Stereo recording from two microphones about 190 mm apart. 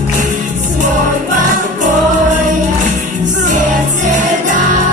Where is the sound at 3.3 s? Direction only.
40° right (ahead or behind).